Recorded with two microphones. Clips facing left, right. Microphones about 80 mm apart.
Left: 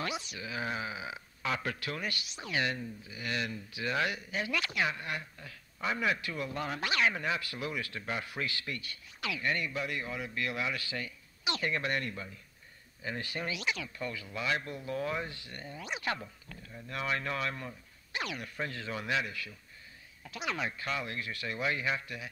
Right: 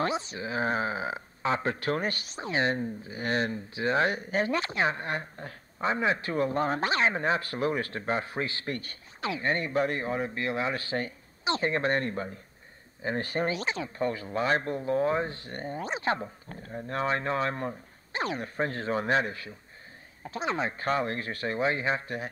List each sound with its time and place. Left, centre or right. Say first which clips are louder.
0.0 s speech: right 8 dB; right